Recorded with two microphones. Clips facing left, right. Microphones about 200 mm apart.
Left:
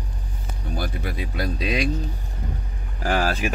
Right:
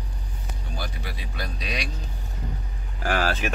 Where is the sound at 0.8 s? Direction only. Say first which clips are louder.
Left 7 dB; 50° left (ahead or behind).